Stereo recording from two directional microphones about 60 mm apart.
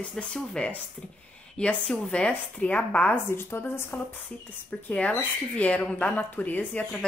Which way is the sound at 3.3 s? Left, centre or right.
Left.